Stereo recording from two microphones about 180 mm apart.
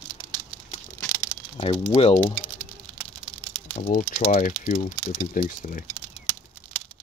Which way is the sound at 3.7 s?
35° left (ahead or behind).